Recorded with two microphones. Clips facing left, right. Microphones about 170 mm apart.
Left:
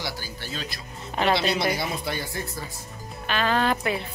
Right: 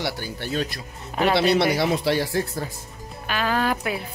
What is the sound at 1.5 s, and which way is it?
Speech, 75° right (ahead or behind).